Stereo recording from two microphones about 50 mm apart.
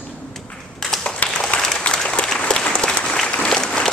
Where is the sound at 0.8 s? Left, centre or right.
Centre.